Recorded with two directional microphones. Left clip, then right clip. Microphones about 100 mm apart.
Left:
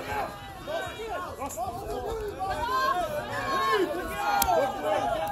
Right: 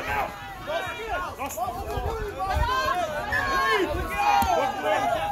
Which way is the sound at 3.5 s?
25° left (ahead or behind).